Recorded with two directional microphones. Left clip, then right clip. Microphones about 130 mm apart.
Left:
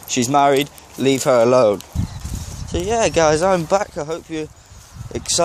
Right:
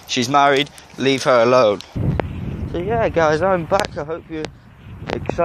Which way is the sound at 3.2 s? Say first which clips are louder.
Left 1 dB; centre (ahead or behind).